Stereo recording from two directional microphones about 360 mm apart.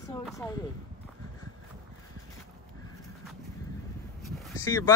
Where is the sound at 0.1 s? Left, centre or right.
Centre.